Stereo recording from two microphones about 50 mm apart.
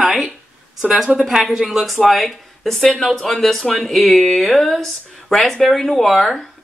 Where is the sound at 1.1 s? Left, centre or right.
Centre.